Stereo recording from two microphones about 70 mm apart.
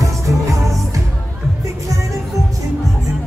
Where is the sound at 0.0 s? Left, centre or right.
Right.